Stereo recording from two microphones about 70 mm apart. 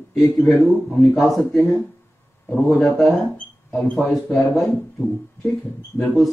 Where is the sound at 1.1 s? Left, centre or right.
Centre.